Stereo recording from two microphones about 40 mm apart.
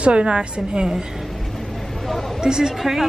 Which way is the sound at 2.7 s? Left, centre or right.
Centre.